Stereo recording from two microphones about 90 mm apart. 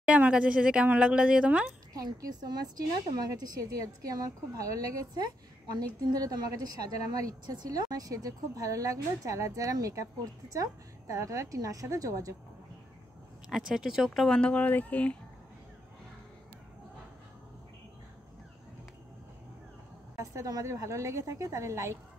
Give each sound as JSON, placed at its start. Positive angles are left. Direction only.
{"t": 0.0, "sound": "speech", "side_deg": -15}
{"t": 2.0, "sound": "a woman's voice", "side_deg": -45}
{"t": 13.5, "sound": "speech", "side_deg": -5}
{"t": 20.2, "sound": "a woman's voice", "side_deg": -40}